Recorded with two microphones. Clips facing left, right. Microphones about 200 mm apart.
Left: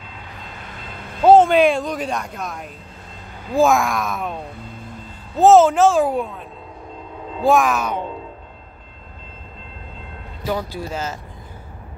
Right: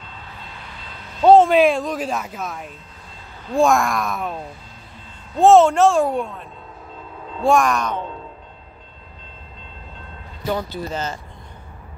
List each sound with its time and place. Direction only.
1.2 s speech: centre (ahead or behind)
10.4 s speech: 5° left (ahead or behind)